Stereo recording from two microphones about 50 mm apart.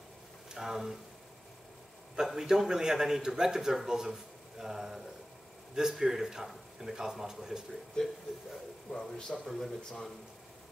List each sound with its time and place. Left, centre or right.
0.5 s speech: centre
2.1 s a man's voice: centre
8.0 s speech: centre